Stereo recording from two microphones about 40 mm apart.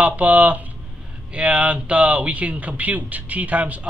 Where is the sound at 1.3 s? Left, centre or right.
Right.